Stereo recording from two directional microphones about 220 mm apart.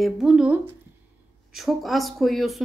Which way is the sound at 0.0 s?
Centre (ahead or behind).